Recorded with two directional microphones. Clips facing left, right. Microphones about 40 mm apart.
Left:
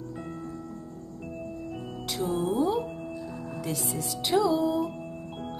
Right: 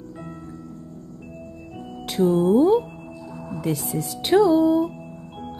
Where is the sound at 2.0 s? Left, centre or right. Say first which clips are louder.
Right 10 dB; right.